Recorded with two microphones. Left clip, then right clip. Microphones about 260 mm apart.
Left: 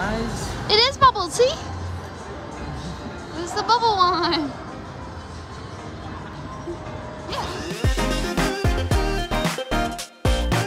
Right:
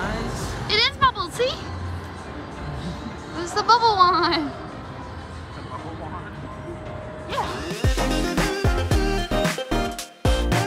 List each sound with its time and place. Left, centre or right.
0.7 s a sound: centre
3.3 s speech: centre
7.5 s music: centre